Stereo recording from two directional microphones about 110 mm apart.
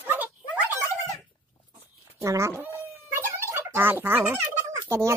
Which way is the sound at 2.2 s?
25° right (ahead or behind).